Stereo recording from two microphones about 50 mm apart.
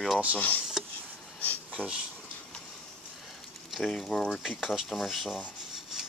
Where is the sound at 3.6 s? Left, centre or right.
Centre.